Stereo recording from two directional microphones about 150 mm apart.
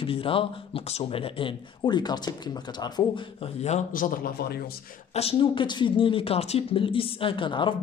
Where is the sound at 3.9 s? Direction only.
70° left (ahead or behind).